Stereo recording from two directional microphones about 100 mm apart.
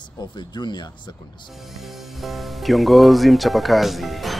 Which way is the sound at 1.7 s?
Centre (ahead or behind).